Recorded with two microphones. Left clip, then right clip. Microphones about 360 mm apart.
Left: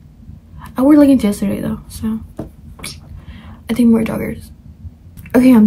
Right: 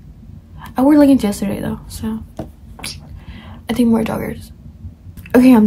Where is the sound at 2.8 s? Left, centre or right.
Centre.